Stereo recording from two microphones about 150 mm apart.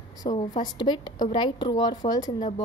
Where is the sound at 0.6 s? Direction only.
30° left (ahead or behind).